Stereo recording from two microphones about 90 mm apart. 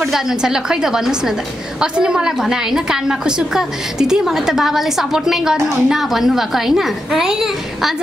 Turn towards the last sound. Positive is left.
turn(degrees=-5)  # may be behind; listen again after turning